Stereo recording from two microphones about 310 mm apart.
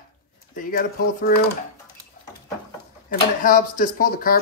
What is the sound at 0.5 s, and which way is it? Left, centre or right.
Speech, left.